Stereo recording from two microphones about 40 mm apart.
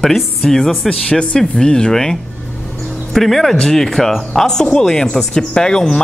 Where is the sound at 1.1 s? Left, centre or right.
Left.